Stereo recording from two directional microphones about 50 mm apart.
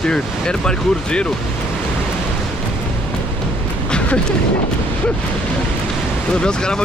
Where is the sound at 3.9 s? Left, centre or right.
Left.